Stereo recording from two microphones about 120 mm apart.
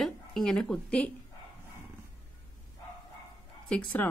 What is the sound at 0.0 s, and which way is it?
Speech, 5° left (ahead or behind).